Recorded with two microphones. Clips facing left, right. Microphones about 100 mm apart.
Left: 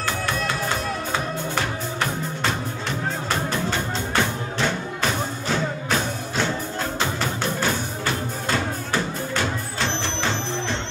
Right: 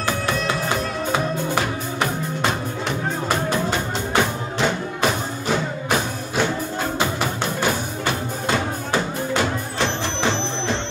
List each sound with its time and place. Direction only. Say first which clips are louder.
1.1 s music: right 6 dB; 15° right (ahead or behind)